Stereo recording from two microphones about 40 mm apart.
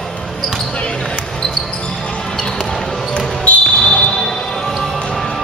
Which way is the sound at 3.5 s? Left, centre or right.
Left.